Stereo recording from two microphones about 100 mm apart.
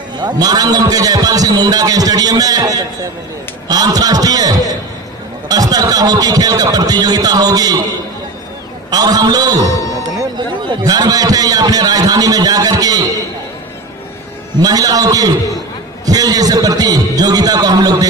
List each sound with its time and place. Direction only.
0.2 s a man's voice: 45° right (ahead or behind)
8.9 s a man's voice: 40° right (ahead or behind)
14.6 s a man's voice: 40° right (ahead or behind)